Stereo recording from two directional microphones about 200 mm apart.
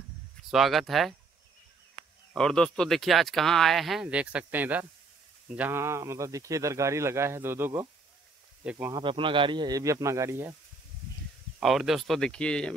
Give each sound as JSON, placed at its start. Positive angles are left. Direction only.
{"t": 0.5, "sound": "speech", "side_deg": 0}
{"t": 2.3, "sound": "a man's voice", "side_deg": 5}
{"t": 9.0, "sound": "a man's voice", "side_deg": -25}
{"t": 11.6, "sound": "speech", "side_deg": 0}